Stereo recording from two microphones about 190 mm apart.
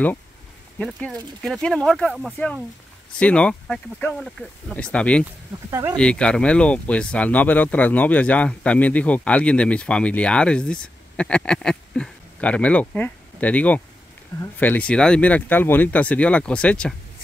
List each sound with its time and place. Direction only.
0.7 s speech: 5° left (ahead or behind)
5.2 s speech: 15° right (ahead or behind)
5.9 s speech: 5° left (ahead or behind)